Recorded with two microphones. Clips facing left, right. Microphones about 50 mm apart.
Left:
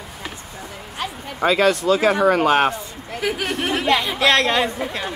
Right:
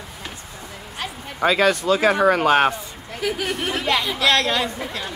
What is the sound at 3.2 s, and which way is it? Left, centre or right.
A woman's voice, left.